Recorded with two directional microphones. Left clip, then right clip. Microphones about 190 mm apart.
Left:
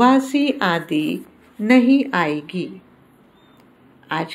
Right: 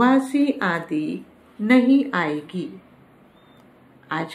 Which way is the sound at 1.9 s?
20° left (ahead or behind).